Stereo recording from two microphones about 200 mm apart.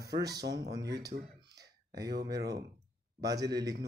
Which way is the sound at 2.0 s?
55° right (ahead or behind).